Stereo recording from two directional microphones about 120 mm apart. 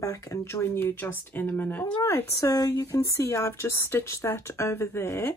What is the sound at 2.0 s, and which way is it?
Speech, 25° left (ahead or behind).